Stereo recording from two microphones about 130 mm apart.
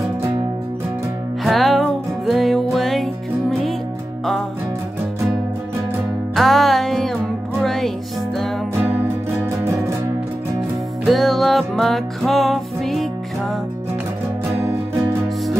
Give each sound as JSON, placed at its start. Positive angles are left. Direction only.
{"t": 1.4, "sound": "music", "side_deg": 0}
{"t": 6.3, "sound": "music", "side_deg": 0}
{"t": 8.7, "sound": "music", "side_deg": -15}
{"t": 11.1, "sound": "music", "side_deg": 0}